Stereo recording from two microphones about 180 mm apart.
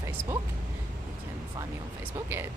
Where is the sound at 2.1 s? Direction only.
15° right (ahead or behind).